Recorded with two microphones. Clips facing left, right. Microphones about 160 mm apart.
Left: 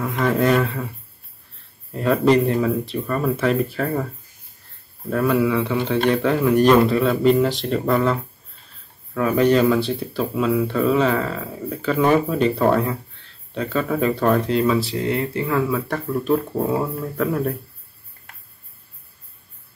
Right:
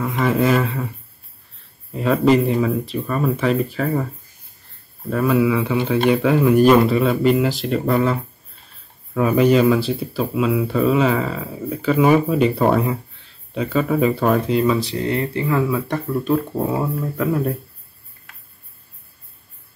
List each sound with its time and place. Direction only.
0.0 s speech: centre (ahead or behind)
2.0 s speech: centre (ahead or behind)
5.1 s speech: centre (ahead or behind)